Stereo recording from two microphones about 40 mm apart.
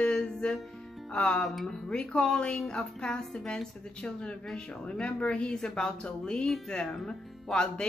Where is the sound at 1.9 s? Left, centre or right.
Left.